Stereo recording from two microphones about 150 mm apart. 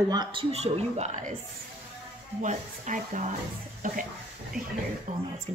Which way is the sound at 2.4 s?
55° right (ahead or behind).